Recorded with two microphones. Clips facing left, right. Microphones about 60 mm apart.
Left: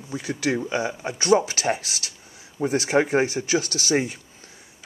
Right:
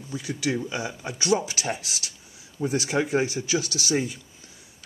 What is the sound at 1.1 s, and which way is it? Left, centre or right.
Speech, left.